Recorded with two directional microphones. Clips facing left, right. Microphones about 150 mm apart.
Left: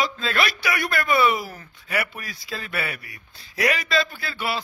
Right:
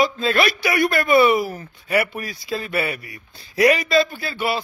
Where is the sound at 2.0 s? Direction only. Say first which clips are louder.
Right 6 dB; 45° right (ahead or behind).